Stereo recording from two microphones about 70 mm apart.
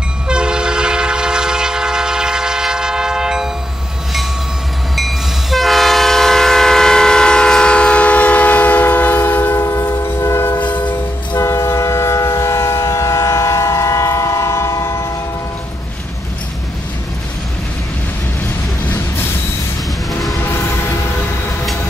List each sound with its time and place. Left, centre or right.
0.3 s train: centre
4.9 s train: centre; by 9.6 s left
9.6 s train: left
10.5 s train: left
11.4 s train: left